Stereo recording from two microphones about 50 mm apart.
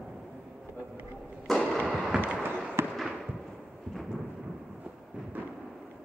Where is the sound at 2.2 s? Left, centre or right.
Right.